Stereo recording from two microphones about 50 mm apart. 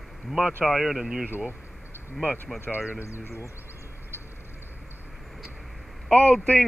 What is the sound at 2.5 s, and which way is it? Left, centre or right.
Speech, left.